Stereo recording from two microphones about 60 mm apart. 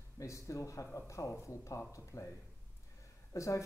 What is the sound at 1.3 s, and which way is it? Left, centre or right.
Speech, left.